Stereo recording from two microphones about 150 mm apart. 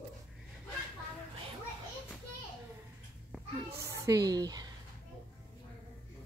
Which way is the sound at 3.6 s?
20° right (ahead or behind).